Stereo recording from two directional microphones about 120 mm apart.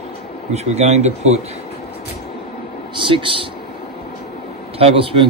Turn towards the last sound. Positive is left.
turn(degrees=-50)  # may be behind; listen again after turning